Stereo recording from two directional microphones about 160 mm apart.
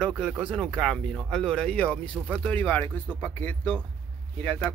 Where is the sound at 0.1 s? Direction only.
5° right (ahead or behind).